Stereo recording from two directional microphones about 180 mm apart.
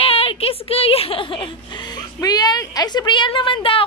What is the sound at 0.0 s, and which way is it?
A woman's voice, 35° left (ahead or behind).